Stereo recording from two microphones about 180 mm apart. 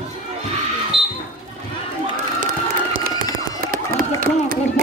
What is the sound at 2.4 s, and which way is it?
Crowd, 50° right (ahead or behind).